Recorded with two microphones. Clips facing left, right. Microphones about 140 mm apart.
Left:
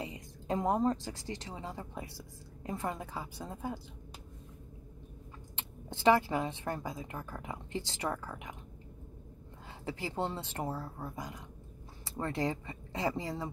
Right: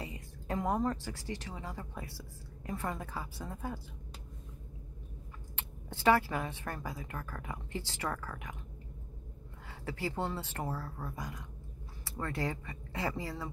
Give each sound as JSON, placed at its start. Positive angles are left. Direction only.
{"t": 0.0, "sound": "speech", "side_deg": 20}
{"t": 5.6, "sound": "speech", "side_deg": 20}
{"t": 9.7, "sound": "speech", "side_deg": 20}